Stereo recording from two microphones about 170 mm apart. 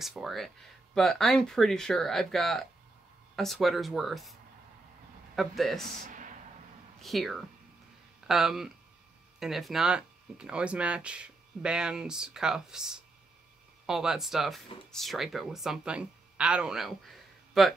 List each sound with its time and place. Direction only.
0.0 s speech: centre (ahead or behind)
6.0 s a sound: 50° right (ahead or behind)
7.0 s speech: centre (ahead or behind)